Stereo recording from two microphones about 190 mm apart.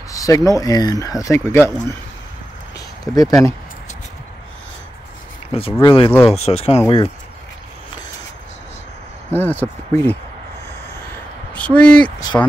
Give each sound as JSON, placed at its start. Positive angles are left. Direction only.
{"t": 0.1, "sound": "speech", "side_deg": 15}
{"t": 3.2, "sound": "speech", "side_deg": 15}
{"t": 5.5, "sound": "speech", "side_deg": 30}
{"t": 9.3, "sound": "speech", "side_deg": 10}
{"t": 11.5, "sound": "speech", "side_deg": 5}